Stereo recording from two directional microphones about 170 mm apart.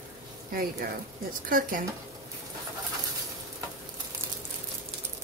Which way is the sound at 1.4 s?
55° right (ahead or behind).